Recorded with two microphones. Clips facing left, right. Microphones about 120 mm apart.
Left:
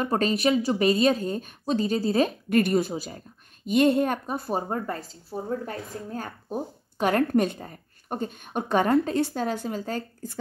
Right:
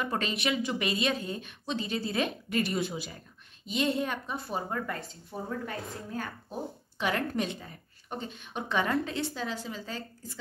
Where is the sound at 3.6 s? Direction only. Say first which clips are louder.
Left 9 dB; 50° left (ahead or behind).